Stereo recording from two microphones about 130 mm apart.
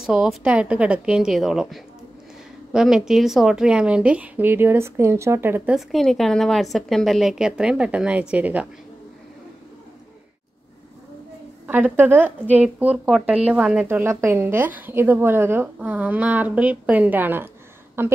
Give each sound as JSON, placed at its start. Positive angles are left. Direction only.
{"t": 0.0, "sound": "a woman's voice", "side_deg": -5}
{"t": 5.8, "sound": "a woman's voice", "side_deg": 0}
{"t": 11.6, "sound": "a woman's voice", "side_deg": -15}